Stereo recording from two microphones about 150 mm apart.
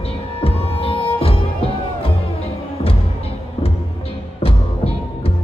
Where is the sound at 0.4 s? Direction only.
40° left (ahead or behind).